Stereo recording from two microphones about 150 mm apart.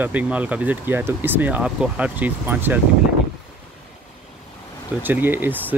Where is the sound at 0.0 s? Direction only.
10° right (ahead or behind).